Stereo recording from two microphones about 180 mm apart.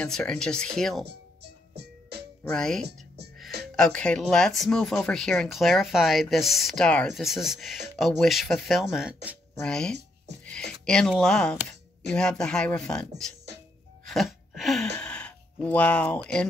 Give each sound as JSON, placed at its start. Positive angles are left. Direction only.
{"t": 0.0, "sound": "speech", "side_deg": 5}
{"t": 1.0, "sound": "music", "side_deg": -65}
{"t": 2.5, "sound": "speech", "side_deg": 5}
{"t": 9.6, "sound": "speech", "side_deg": 5}
{"t": 10.4, "sound": "a sound", "side_deg": 5}
{"t": 12.1, "sound": "speech", "side_deg": 5}
{"t": 14.0, "sound": "wail", "side_deg": 0}
{"t": 15.0, "sound": "a sound", "side_deg": 5}